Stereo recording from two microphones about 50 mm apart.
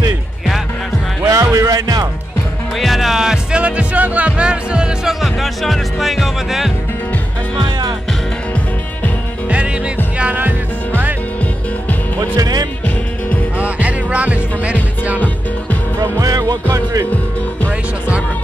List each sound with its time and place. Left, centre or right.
1.2 s music: right
2.8 s music: centre
3.6 s speech: right
5.0 s speech: centre
10.1 s music: right
13.6 s music: right